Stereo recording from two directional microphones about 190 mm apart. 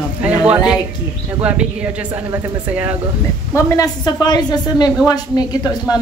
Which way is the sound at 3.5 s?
15° left (ahead or behind).